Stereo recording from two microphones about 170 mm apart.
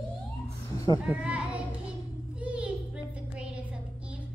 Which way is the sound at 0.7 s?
20° left (ahead or behind).